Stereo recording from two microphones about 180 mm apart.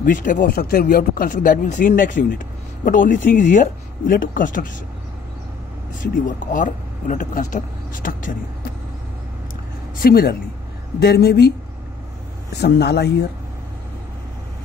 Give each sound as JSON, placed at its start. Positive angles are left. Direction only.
{"t": 0.0, "sound": "speech", "side_deg": 50}
{"t": 5.9, "sound": "speech", "side_deg": 45}
{"t": 9.9, "sound": "speech", "side_deg": 55}
{"t": 12.5, "sound": "speech", "side_deg": 65}